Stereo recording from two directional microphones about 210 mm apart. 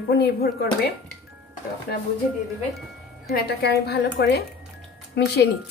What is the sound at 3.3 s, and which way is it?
A woman's voice, 50° left (ahead or behind).